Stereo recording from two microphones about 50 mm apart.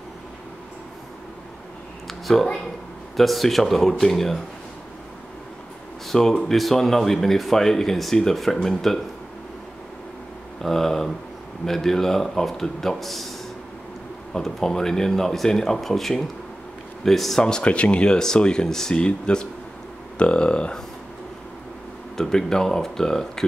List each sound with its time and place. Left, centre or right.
2.0 s a sound: centre
3.2 s speech: centre
6.0 s speech: centre
10.6 s speech: centre
14.3 s speech: centre
22.1 s speech: centre